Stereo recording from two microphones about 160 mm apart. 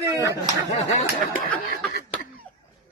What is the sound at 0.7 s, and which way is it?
Speech, 50° left (ahead or behind).